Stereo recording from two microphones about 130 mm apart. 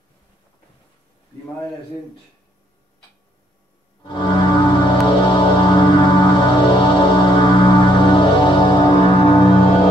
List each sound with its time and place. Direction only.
4.1 s music: 40° left (ahead or behind)